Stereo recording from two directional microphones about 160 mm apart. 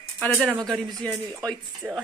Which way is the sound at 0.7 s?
5° left (ahead or behind).